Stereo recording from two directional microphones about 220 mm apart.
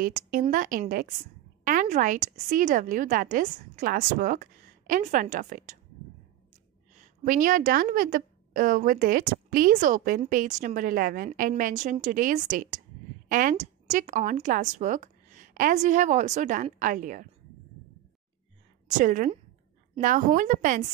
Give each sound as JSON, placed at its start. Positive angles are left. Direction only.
{"t": 0.0, "sound": "a woman's voice", "side_deg": -40}
{"t": 1.6, "sound": "a sound", "side_deg": -35}
{"t": 2.3, "sound": "a woman's voice", "side_deg": -35}
{"t": 7.0, "sound": "a woman's voice", "side_deg": -40}
{"t": 18.9, "sound": "a woman's voice", "side_deg": -35}